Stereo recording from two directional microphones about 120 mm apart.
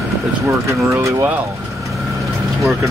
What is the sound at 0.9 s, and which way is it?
Speech, 25° right (ahead or behind).